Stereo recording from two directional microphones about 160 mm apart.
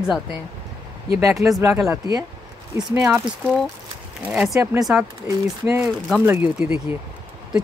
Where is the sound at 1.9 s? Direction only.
20° right (ahead or behind).